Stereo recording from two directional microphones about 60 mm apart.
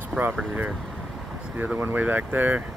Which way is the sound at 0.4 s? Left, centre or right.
Centre.